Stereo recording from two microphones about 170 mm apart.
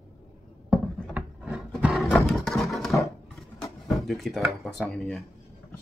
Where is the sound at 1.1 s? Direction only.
5° right (ahead or behind).